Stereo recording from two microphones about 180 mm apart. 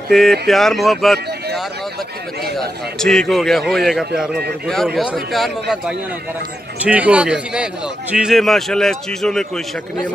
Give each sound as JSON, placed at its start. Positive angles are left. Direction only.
{"t": 0.1, "sound": "a man's voice", "side_deg": 0}
{"t": 3.0, "sound": "a man's voice", "side_deg": 5}